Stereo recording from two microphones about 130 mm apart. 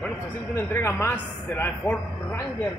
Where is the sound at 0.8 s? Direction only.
20° left (ahead or behind).